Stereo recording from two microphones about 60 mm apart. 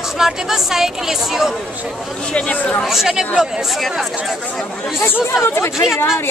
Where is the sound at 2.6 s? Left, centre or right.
Left.